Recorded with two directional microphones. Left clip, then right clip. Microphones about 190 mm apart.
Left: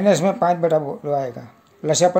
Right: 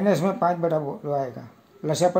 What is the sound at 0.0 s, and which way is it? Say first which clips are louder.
A man's voice: left 5 dB; 25° left (ahead or behind).